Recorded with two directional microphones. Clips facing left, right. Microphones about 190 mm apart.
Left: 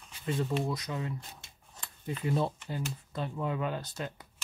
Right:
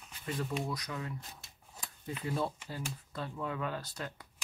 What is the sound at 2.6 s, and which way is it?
Speech, 20° left (ahead or behind).